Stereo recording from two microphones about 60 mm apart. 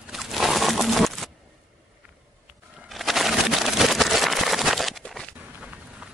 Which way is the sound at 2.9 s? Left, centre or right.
Centre.